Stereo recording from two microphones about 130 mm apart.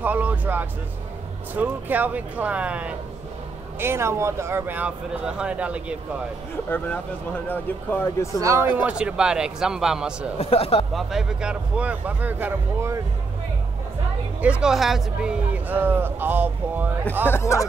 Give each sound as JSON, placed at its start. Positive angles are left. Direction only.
{"t": 0.0, "sound": "music", "side_deg": -10}
{"t": 1.5, "sound": "speech", "side_deg": -15}
{"t": 6.7, "sound": "speech", "side_deg": 15}
{"t": 8.4, "sound": "speech", "side_deg": -20}
{"t": 10.4, "sound": "speech", "side_deg": 50}
{"t": 11.0, "sound": "speech", "side_deg": -5}
{"t": 14.4, "sound": "speech", "side_deg": -5}
{"t": 17.3, "sound": "speech", "side_deg": 20}